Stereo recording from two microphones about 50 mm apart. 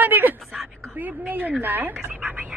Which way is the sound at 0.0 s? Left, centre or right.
Right.